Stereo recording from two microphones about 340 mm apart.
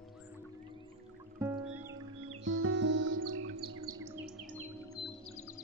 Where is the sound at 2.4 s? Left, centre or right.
Right.